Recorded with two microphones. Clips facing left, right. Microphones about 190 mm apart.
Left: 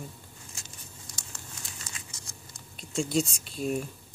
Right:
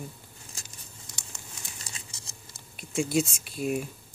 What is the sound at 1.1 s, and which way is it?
Crumpling, 25° right (ahead or behind).